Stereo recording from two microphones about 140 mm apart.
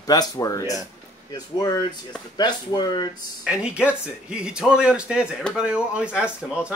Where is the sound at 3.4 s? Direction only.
5° right (ahead or behind).